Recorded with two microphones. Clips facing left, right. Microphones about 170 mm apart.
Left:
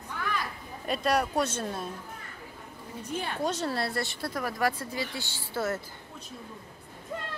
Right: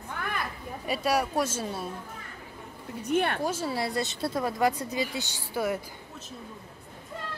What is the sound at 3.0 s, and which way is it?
Speech, 65° right (ahead or behind).